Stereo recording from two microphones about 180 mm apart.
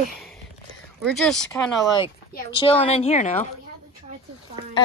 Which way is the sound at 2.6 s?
30° left (ahead or behind).